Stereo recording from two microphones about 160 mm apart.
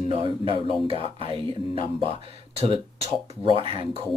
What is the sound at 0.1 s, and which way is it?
Speech, 35° right (ahead or behind).